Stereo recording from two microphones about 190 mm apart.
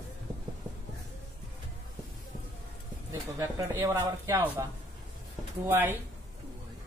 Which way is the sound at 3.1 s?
15° right (ahead or behind).